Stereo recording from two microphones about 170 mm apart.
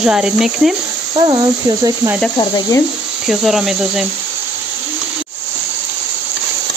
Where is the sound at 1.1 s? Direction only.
25° right (ahead or behind).